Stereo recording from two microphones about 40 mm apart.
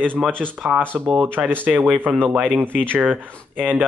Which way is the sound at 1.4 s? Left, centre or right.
Centre.